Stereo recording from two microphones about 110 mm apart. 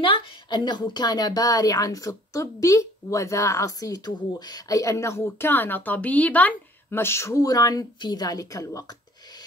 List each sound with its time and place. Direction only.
0.0 s speech: 50° left (ahead or behind); by 9.4 s 35° left (ahead or behind)